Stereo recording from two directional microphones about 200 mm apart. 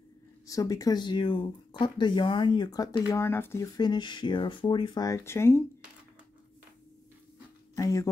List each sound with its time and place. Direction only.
0.5 s speech: 15° left (ahead or behind)
7.7 s speech: 15° left (ahead or behind)